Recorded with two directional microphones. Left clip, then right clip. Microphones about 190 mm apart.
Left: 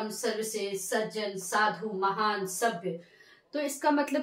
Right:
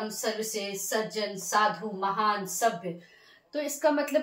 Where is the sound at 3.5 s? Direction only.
25° left (ahead or behind).